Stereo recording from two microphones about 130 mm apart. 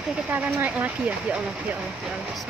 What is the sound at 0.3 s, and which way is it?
Speech, 15° right (ahead or behind).